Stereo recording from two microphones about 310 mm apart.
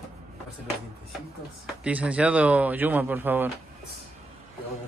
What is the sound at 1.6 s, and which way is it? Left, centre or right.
Speech, centre.